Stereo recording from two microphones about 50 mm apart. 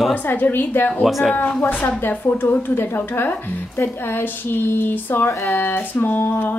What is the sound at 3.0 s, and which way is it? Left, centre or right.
Speech, left.